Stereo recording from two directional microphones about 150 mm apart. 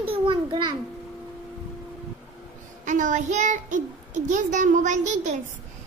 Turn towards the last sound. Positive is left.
turn(degrees=-55)  # may be behind; listen again after turning